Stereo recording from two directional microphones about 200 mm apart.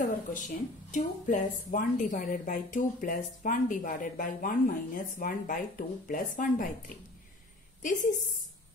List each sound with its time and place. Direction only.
0.0 s a woman's voice: 40° left (ahead or behind)